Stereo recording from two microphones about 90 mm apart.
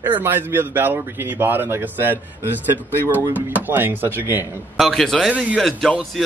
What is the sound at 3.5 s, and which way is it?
Speech, 20° right (ahead or behind).